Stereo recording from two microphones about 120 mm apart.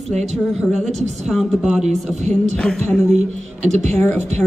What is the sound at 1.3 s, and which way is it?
Speech, centre (ahead or behind).